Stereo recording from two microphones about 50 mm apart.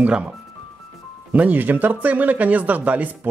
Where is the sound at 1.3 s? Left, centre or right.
Right.